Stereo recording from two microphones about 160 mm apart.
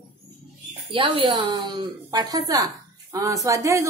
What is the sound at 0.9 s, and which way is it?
A woman's voice, 30° right (ahead or behind).